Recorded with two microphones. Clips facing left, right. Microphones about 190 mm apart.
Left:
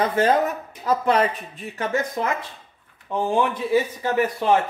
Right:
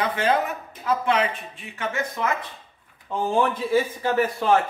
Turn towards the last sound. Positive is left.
turn(degrees=15)  # may be behind; listen again after turning